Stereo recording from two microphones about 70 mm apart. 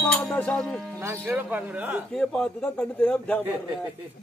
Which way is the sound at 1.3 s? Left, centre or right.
Right.